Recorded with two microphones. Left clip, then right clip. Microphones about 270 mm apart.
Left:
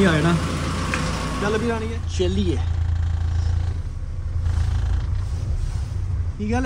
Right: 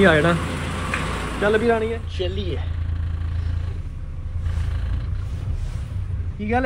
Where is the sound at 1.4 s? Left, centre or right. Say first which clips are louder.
Right 6 dB; centre.